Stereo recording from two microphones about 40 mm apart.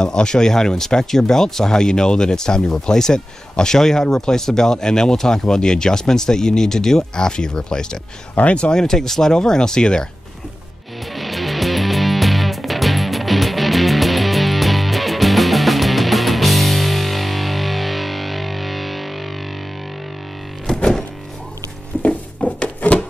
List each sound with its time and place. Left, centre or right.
0.0 s speech: centre
8.4 s speech: left
8.7 s speech: centre
11.1 s music: centre
20.6 s music: centre
22.0 s a sound: left